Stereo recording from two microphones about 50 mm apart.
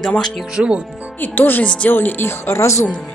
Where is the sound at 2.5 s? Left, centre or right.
Left.